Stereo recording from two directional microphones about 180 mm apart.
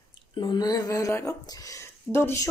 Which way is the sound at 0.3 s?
25° left (ahead or behind).